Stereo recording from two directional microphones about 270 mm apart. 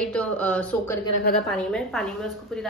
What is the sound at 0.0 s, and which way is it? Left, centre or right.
Speech, centre.